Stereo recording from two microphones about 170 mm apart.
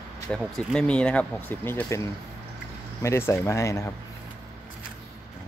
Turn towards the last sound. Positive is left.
turn(degrees=15)  # may be behind; listen again after turning